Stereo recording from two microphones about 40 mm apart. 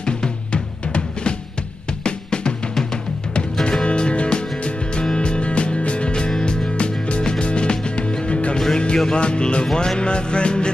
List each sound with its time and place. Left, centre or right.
0.0 s drum: left
2.0 s music: left
3.8 s music: left